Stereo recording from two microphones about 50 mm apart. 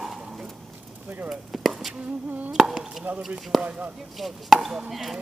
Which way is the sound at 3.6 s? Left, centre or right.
Right.